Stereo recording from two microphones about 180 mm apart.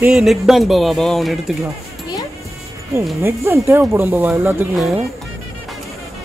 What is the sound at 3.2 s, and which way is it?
Speech, 15° right (ahead or behind).